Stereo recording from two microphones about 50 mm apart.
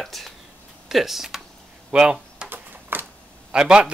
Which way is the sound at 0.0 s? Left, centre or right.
Centre.